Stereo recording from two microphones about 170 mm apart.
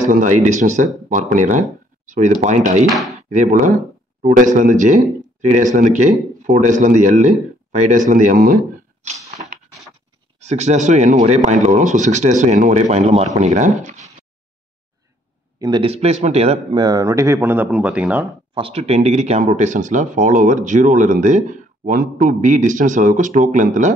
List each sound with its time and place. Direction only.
0.0 s speech: 50° right (ahead or behind)
2.9 s speech: centre (ahead or behind)
3.3 s speech: 45° right (ahead or behind)
9.0 s a sound: 45° right (ahead or behind)
10.4 s speech: 40° right (ahead or behind)
15.6 s speech: 30° right (ahead or behind)
16.7 s speech: 20° right (ahead or behind)
18.5 s speech: 35° right (ahead or behind)